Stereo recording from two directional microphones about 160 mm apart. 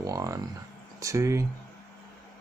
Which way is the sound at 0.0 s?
20° right (ahead or behind).